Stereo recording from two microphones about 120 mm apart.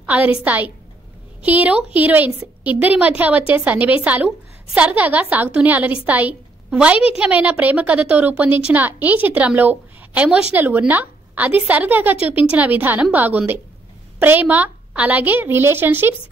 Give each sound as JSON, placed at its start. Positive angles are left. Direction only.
{"t": 0.0, "sound": "speech", "side_deg": -10}